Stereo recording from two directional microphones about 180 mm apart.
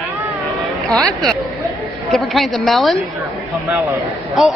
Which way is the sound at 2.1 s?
Centre (ahead or behind).